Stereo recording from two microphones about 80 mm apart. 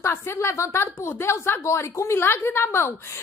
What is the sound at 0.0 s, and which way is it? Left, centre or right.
A woman's voice, left.